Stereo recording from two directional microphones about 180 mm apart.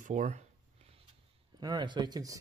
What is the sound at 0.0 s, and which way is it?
Speech, 45° right (ahead or behind).